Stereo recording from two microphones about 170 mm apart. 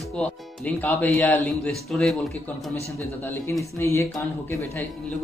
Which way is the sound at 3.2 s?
10° left (ahead or behind).